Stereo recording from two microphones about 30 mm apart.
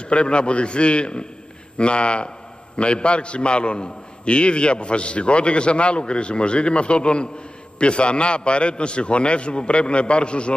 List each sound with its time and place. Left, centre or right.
0.0 s a man's voice: left